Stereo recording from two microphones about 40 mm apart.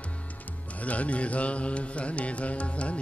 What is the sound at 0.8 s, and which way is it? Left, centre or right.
Music, left.